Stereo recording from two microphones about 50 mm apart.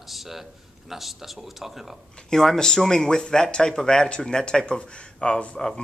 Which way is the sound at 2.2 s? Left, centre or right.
Centre.